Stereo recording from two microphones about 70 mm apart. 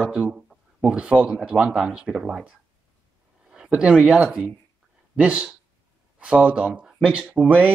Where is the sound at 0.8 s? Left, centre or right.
Centre.